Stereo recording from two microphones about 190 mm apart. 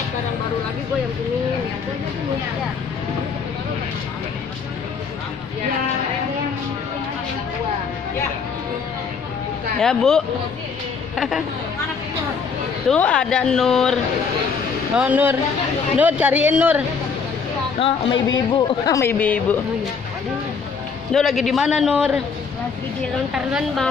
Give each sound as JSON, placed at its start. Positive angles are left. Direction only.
{"t": 9.8, "sound": "a man's voice", "side_deg": 5}
{"t": 12.9, "sound": "a man's voice", "side_deg": 5}
{"t": 15.0, "sound": "speech", "side_deg": -10}
{"t": 17.7, "sound": "speech", "side_deg": 25}
{"t": 21.1, "sound": "a man's voice", "side_deg": 0}
{"t": 23.3, "sound": "a man's voice", "side_deg": -5}